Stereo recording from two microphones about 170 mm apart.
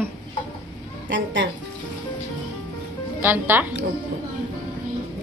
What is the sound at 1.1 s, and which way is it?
Speech, 90° right.